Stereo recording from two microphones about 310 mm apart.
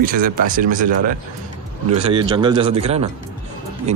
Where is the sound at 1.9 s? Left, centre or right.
Centre.